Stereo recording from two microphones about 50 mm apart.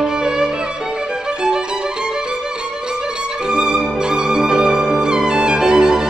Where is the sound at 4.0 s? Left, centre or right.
Centre.